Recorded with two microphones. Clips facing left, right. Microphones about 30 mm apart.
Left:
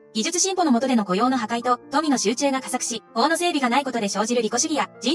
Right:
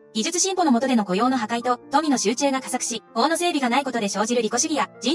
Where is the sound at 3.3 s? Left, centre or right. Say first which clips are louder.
Left 1 dB; centre.